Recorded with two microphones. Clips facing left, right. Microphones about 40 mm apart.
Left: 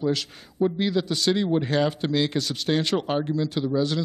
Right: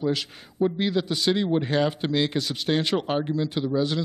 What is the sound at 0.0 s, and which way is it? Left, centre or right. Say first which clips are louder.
A man's voice: left 1 dB; centre.